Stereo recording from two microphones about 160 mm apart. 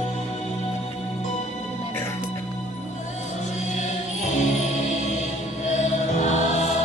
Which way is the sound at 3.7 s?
50° left (ahead or behind).